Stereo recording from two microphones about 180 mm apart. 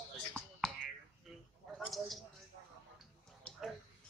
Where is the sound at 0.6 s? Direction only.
Centre (ahead or behind).